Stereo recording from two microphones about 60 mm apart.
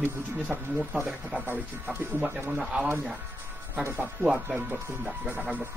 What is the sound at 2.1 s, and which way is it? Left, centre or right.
Speech, centre.